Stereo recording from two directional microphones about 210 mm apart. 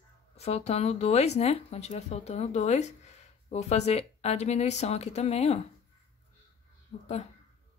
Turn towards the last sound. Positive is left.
turn(degrees=35)  # may be behind; listen again after turning